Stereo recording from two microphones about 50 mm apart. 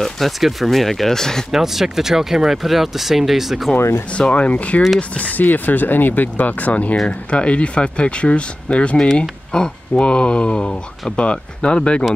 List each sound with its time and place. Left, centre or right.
0.4 s speech: centre
1.5 s speech: centre
4.1 s speech: left
8.9 s speech: centre